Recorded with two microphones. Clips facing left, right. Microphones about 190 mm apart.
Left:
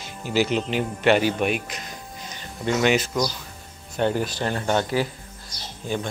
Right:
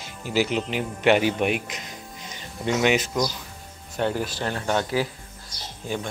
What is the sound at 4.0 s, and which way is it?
Speech, 5° right (ahead or behind).